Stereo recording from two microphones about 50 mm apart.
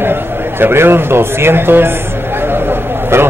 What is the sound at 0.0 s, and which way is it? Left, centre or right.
A man's voice, right.